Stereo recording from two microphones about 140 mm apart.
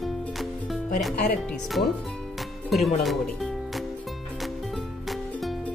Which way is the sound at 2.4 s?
Centre (ahead or behind).